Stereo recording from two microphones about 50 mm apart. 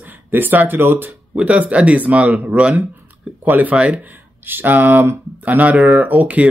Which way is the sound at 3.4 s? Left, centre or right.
Right.